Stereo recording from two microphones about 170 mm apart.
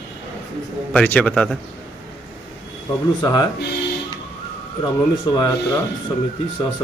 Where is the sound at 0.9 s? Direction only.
5° left (ahead or behind).